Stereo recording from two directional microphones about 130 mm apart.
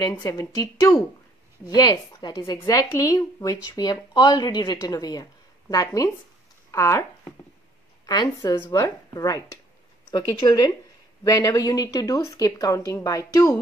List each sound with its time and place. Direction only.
0.1 s a woman's voice: 25° left (ahead or behind)
8.1 s a woman's voice: 30° left (ahead or behind)